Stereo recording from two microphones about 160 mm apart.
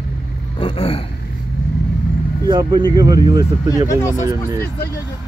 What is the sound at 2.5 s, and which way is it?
Speech, 25° right (ahead or behind).